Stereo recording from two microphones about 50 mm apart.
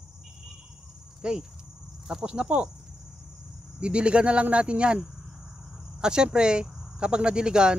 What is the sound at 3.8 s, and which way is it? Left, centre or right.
Speech, right.